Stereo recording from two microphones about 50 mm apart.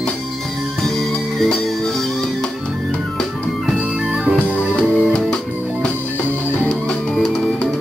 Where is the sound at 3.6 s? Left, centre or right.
Centre.